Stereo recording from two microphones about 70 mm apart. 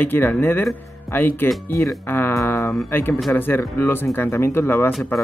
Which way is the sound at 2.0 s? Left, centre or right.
Left.